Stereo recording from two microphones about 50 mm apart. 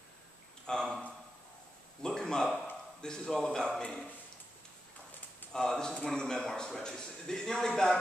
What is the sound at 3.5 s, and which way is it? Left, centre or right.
Speech, centre.